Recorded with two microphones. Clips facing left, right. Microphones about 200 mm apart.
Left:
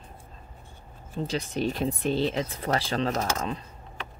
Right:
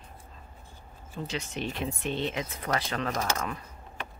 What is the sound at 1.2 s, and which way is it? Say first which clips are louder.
Speech: left 6 dB; 35° left (ahead or behind).